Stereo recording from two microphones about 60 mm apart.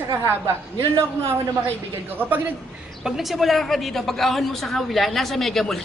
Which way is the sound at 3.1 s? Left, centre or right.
Centre.